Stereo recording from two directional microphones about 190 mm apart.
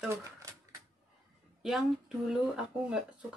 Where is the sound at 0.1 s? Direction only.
15° right (ahead or behind).